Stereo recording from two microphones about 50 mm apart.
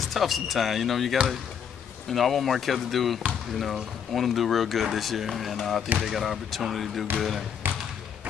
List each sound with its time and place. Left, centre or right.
0.1 s speech: centre
7.6 s basketball bounce: right